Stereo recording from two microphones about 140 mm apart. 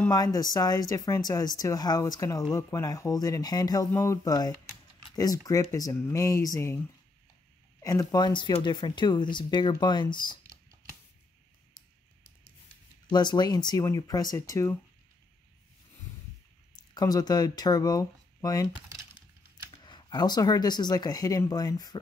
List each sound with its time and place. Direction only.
0.1 s speech: 25° left (ahead or behind)
7.8 s speech: 25° left (ahead or behind)
13.1 s speech: 30° left (ahead or behind)
16.7 s speech: 30° left (ahead or behind)
19.8 s speech: 30° left (ahead or behind)